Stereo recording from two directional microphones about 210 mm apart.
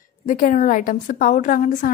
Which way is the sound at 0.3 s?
35° left (ahead or behind).